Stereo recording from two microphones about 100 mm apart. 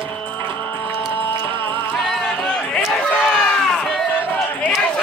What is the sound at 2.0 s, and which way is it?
Music, 5° left (ahead or behind).